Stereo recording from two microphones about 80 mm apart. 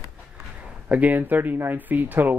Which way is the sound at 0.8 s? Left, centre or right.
Right.